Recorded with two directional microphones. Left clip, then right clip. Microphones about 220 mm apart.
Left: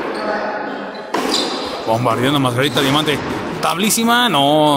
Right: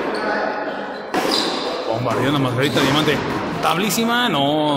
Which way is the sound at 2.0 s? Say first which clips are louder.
Left 2 dB; 30° left (ahead or behind).